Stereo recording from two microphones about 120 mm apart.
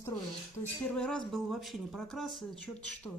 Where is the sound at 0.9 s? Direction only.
5° left (ahead or behind).